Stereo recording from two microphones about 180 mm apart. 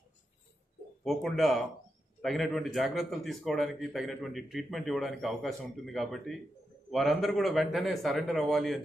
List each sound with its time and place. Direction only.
1.0 s a man's voice: centre (ahead or behind)